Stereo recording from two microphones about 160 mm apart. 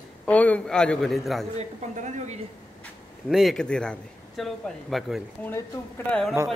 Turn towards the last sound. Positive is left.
turn(degrees=5)  # may be behind; listen again after turning